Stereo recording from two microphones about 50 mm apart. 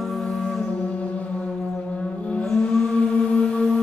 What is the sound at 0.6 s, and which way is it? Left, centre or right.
Music, left.